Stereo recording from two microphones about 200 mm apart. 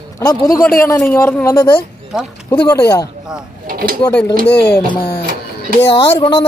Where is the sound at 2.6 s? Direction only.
15° left (ahead or behind).